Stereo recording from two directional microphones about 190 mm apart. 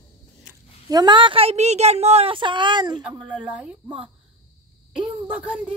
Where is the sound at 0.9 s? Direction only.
20° right (ahead or behind).